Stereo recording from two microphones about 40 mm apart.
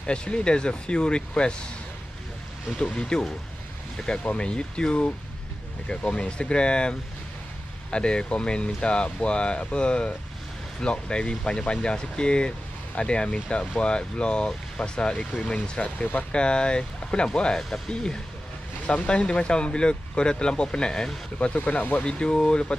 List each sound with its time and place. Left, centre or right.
0.0 s speech: left
2.8 s speech: left
19.0 s speech: left
21.5 s speech: left
22.0 s speech: left